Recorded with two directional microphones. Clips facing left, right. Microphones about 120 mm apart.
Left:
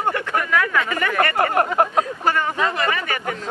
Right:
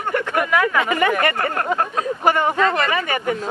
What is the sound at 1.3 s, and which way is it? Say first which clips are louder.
Speech: left 3 dB; 20° left (ahead or behind).